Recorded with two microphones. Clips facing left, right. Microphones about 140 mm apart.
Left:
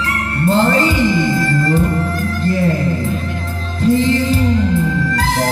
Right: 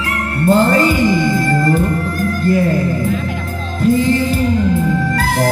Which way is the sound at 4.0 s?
50° right (ahead or behind).